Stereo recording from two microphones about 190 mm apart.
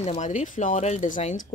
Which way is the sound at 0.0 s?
35° left (ahead or behind).